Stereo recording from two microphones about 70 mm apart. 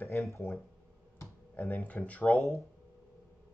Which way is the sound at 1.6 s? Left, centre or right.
Left.